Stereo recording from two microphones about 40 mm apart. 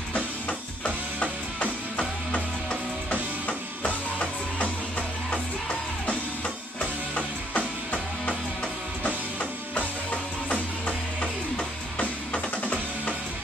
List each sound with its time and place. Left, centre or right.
0.1 s music: left